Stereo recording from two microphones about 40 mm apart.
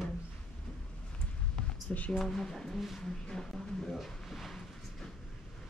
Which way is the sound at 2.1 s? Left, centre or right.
Centre.